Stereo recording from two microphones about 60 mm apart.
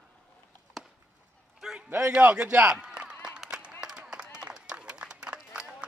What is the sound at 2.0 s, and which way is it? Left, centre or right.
Speech, right.